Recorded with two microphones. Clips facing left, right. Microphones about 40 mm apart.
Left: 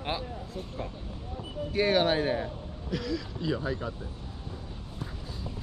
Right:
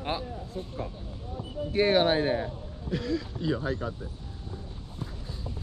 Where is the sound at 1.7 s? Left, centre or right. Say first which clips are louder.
Right 2 dB; right.